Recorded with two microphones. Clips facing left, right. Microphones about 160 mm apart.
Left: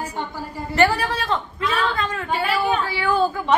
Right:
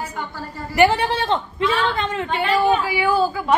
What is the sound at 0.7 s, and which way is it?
A woman's voice, 25° right (ahead or behind).